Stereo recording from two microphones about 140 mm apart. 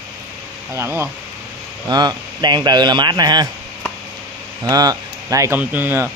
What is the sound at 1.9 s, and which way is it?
Speech, 30° right (ahead or behind).